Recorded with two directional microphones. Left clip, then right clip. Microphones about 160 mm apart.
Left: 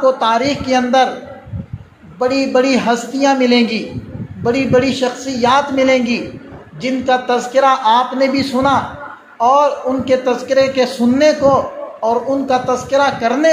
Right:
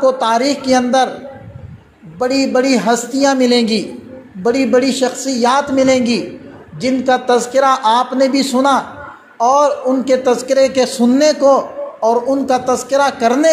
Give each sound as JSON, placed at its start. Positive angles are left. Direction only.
{"t": 0.0, "sound": "speech", "side_deg": -40}
{"t": 2.1, "sound": "a man's voice", "side_deg": -40}